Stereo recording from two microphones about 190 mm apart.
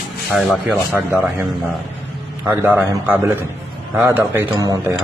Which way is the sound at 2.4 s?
10° right (ahead or behind).